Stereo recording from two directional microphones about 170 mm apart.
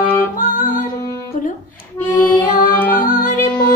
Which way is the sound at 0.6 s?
50° left (ahead or behind).